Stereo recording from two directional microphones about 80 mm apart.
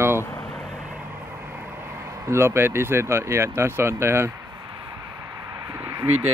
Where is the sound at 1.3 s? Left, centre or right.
Right.